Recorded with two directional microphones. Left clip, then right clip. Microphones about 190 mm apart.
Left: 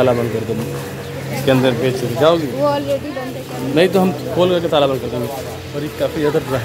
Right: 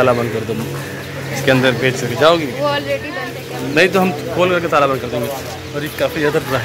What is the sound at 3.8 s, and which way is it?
A man's voice, 15° left (ahead or behind).